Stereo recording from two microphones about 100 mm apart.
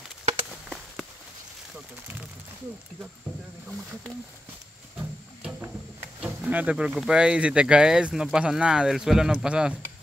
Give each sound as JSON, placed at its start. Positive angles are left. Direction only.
{"t": 0.5, "sound": "a sound", "side_deg": 0}
{"t": 4.9, "sound": "music", "side_deg": -15}
{"t": 6.2, "sound": "speech", "side_deg": -15}